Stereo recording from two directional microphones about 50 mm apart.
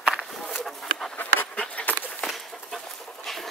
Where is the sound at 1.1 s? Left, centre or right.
Left.